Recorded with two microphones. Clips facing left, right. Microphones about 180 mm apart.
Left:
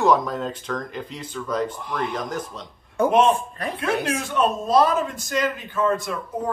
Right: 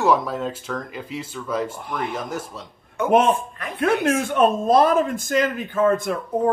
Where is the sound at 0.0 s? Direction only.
5° right (ahead or behind).